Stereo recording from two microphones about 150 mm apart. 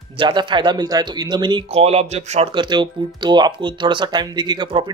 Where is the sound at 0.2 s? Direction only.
30° right (ahead or behind).